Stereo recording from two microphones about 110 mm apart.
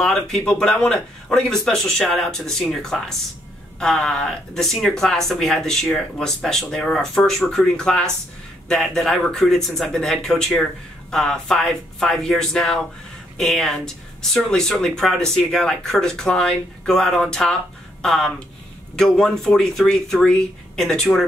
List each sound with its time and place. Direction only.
0.0 s speech: 5° left (ahead or behind)